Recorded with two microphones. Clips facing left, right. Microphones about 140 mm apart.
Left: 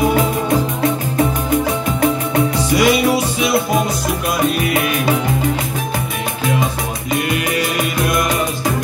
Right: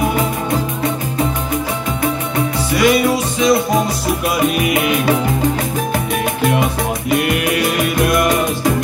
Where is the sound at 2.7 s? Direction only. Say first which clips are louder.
Right 1 dB; 10° left (ahead or behind).